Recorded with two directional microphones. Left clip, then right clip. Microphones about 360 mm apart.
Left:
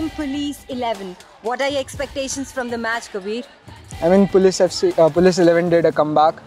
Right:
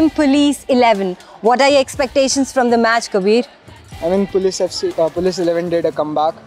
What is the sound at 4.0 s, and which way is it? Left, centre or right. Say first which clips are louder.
Speech: left 2 dB; left.